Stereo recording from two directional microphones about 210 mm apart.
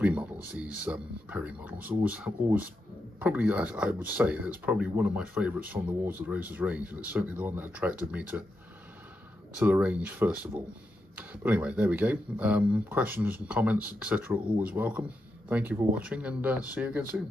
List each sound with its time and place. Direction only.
0.0 s speech: 5° right (ahead or behind)
9.6 s speech: 5° right (ahead or behind)